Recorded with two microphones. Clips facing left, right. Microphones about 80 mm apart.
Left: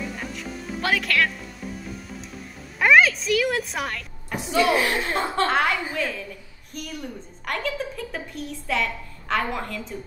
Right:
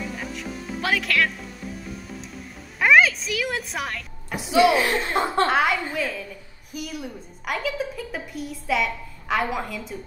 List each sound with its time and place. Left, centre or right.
0.1 s music: centre
2.8 s a woman's voice: centre
5.0 s speech: right
5.5 s a woman's voice: centre